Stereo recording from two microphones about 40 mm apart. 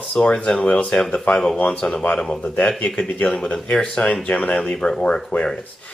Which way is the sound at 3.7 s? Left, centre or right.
Left.